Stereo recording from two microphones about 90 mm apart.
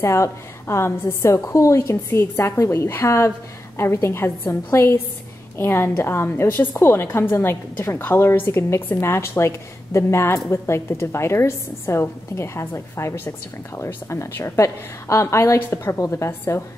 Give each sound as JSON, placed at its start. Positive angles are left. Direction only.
{"t": 0.0, "sound": "a woman's voice", "side_deg": 30}